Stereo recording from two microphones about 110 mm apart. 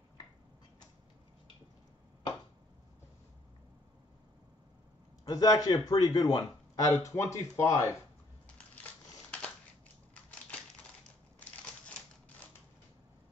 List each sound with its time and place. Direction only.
5.2 s a man's voice: 35° left (ahead or behind)
8.5 s crushing: 10° left (ahead or behind)